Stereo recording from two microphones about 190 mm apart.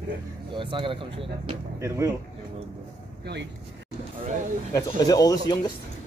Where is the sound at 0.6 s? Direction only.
25° right (ahead or behind).